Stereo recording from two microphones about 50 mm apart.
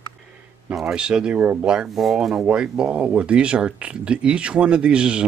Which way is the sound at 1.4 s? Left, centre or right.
Right.